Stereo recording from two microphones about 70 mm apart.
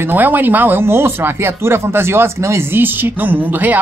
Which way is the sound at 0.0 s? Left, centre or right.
Right.